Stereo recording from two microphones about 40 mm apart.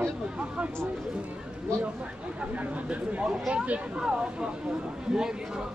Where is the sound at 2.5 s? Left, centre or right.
Right.